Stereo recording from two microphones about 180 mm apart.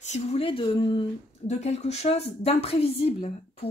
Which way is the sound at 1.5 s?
40° left (ahead or behind).